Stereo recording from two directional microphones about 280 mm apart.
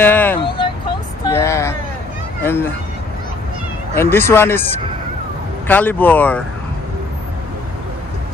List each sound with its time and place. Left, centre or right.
0.0 s speech: centre
0.4 s vehicle: centre
1.3 s speech: centre
3.9 s speech: centre
5.7 s speech: centre